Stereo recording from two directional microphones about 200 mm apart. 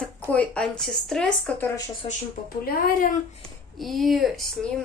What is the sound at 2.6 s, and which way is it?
Speech, 45° left (ahead or behind).